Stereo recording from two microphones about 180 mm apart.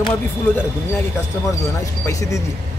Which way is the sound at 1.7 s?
15° left (ahead or behind).